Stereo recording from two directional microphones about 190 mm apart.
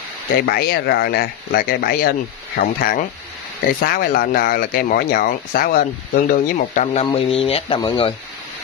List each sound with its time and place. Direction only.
0.5 s speech: 55° left (ahead or behind); by 8.1 s 25° left (ahead or behind)